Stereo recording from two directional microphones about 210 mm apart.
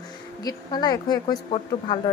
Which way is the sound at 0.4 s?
20° left (ahead or behind).